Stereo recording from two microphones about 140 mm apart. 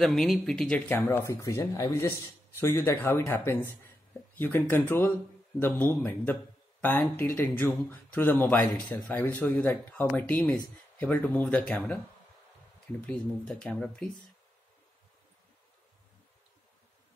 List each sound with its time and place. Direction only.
0.0 s speech: centre (ahead or behind)
13.0 s speech: 5° left (ahead or behind)